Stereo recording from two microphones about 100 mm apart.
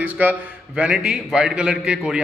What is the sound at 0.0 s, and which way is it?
A man's voice, 15° right (ahead or behind).